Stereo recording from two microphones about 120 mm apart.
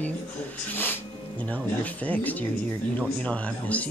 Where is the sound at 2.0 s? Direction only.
15° left (ahead or behind).